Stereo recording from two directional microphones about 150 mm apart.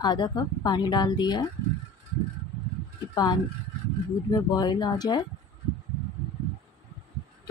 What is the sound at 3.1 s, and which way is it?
A woman's voice, 30° left (ahead or behind).